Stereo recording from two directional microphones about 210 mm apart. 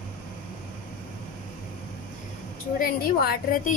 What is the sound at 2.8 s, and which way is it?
Speech, 45° left (ahead or behind).